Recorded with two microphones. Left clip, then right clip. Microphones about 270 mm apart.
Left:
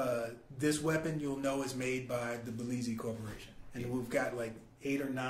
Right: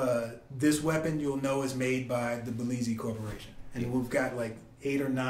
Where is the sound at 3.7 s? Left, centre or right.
Left.